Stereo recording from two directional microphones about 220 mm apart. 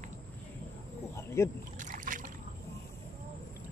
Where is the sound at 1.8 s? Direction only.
35° right (ahead or behind).